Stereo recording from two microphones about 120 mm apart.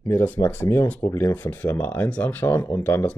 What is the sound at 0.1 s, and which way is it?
Speech, 20° left (ahead or behind).